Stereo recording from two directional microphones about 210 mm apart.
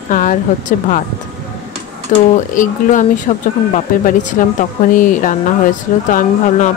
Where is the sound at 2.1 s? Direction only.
35° left (ahead or behind).